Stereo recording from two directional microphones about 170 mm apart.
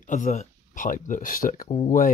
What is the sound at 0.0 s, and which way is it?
Speech, 50° left (ahead or behind).